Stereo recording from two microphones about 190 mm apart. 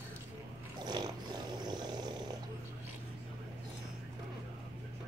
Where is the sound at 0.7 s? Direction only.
20° right (ahead or behind).